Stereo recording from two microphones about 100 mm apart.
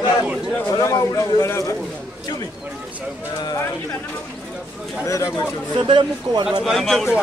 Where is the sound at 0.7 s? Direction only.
35° left (ahead or behind).